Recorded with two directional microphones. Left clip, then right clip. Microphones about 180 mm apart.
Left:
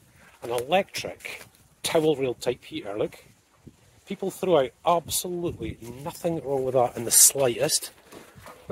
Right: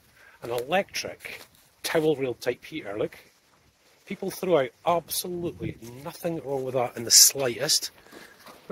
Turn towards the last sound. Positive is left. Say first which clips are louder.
# left 1 dB
turn(degrees=30)  # may be behind; listen again after turning